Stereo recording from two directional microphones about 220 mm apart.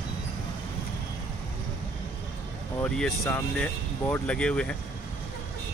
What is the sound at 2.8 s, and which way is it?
Speech, 5° left (ahead or behind).